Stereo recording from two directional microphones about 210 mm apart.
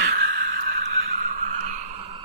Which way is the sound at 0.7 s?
65° right (ahead or behind).